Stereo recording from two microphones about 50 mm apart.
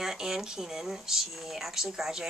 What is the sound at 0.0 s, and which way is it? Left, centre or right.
Speech, centre.